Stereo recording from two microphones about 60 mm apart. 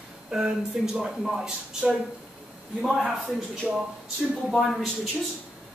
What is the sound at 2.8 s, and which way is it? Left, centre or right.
Speech, centre.